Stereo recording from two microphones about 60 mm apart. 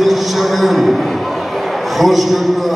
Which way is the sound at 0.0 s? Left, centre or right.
Centre.